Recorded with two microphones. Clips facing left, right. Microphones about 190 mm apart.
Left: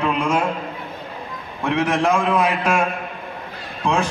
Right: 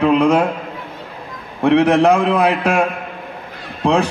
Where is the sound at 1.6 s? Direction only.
65° right (ahead or behind).